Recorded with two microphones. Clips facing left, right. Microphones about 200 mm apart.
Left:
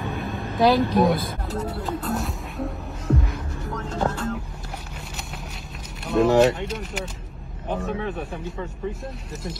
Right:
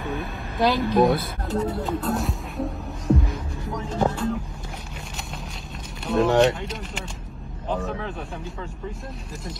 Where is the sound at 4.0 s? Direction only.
10° right (ahead or behind).